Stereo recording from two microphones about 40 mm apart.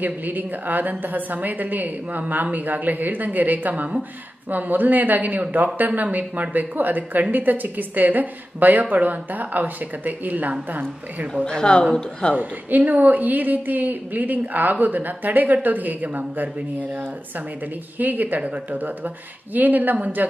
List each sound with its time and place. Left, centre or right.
0.0 s a woman's voice: right
11.4 s speech: centre
12.4 s a woman's voice: right
17.9 s a woman's voice: right